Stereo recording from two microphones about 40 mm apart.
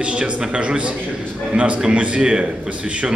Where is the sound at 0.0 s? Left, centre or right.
Right.